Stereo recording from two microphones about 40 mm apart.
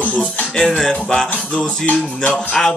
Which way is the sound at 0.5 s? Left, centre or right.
Centre.